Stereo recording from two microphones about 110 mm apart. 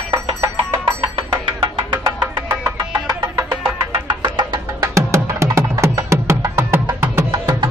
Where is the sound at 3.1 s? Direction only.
30° right (ahead or behind).